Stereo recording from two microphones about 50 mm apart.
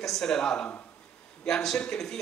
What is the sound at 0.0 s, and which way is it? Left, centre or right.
A man's voice, centre.